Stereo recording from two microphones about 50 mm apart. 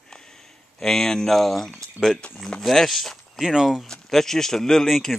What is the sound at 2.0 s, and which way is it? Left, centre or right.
Speech, centre.